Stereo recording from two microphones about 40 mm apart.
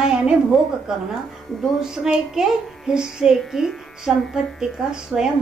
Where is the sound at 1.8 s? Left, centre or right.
Centre.